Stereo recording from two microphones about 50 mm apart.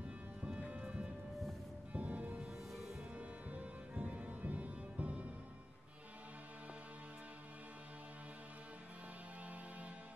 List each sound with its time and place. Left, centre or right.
0.4 s music: right